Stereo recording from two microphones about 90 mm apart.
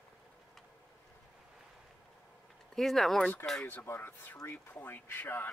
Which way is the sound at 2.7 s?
Centre (ahead or behind).